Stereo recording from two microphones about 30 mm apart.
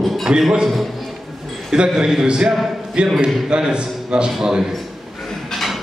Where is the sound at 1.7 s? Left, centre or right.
Right.